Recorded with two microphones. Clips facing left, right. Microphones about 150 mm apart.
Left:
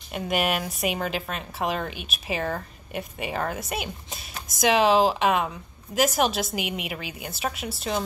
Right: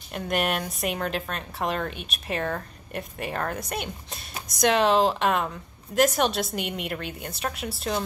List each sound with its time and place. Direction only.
0.1 s a woman's voice: centre (ahead or behind)